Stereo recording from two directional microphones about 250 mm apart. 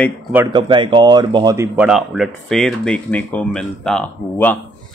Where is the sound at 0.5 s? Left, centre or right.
Centre.